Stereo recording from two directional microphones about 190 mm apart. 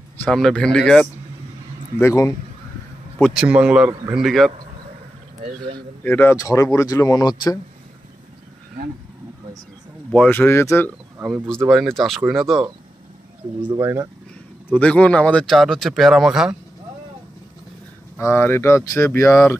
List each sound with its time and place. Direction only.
0.2 s speech: 5° left (ahead or behind)
2.0 s speech: 15° left (ahead or behind)
3.2 s speech: centre (ahead or behind)
6.0 s speech: 10° left (ahead or behind)
10.1 s speech: 10° left (ahead or behind)
11.2 s speech: centre (ahead or behind)
13.7 s speech: 15° right (ahead or behind)
14.7 s speech: 5° left (ahead or behind)
18.1 s speech: 10° left (ahead or behind)